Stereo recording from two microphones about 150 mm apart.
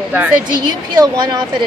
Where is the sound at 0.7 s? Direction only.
30° right (ahead or behind).